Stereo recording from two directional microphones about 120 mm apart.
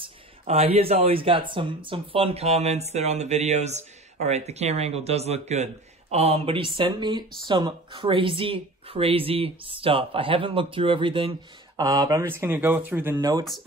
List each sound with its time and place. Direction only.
0.0 s speech: 55° right (ahead or behind)
11.8 s speech: 35° right (ahead or behind)
12.2 s speech: 20° right (ahead or behind)
13.2 s speech: 30° right (ahead or behind)